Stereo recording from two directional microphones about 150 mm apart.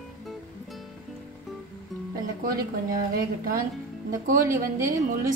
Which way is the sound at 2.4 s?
75° right (ahead or behind).